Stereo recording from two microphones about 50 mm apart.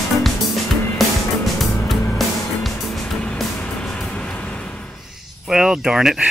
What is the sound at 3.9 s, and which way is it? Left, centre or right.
Vehicle, left.